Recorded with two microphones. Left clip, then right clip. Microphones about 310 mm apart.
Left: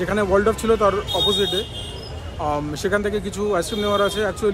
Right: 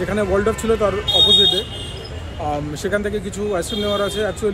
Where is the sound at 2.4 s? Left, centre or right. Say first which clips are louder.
Even; centre.